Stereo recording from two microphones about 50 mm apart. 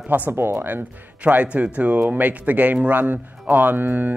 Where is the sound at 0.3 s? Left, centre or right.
Right.